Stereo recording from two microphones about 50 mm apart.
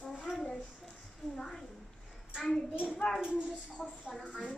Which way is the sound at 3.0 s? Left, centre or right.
Left.